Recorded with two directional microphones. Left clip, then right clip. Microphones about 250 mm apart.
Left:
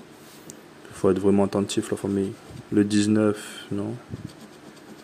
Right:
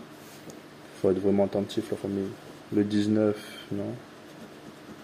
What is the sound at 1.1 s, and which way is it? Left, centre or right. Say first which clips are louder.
Speech: left 3 dB; left.